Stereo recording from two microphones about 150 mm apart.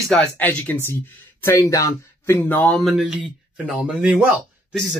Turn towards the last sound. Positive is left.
turn(degrees=-5)  # may be behind; listen again after turning